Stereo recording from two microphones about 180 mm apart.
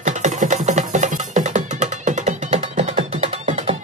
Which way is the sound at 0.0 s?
45° right (ahead or behind).